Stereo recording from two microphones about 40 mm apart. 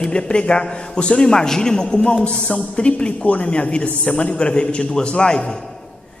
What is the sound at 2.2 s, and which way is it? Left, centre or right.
Speech, left.